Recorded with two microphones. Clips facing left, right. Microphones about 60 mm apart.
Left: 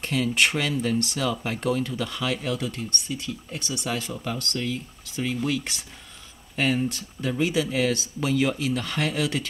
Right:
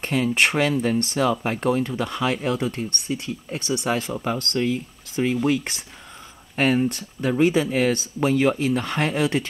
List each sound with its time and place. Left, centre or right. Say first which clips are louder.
0.0 s speech: right 3 dB; right